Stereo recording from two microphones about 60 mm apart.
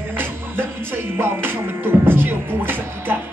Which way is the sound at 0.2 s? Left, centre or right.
Right.